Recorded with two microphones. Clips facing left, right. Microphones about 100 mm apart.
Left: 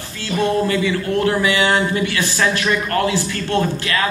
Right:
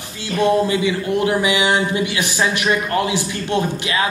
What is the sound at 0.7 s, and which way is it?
A man's voice, 15° right (ahead or behind).